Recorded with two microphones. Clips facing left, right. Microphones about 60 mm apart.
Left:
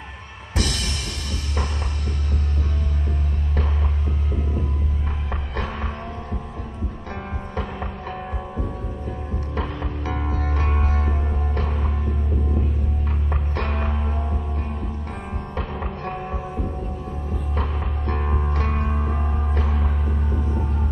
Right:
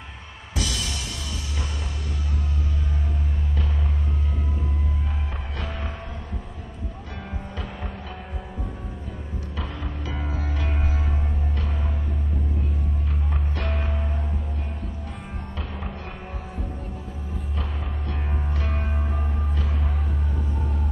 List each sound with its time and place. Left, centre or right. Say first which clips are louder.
0.6 s music: left 3 dB; left
9.6 s music: left 5 dB; left
13.3 s music: left 4 dB; left
17.6 s music: left 6 dB; left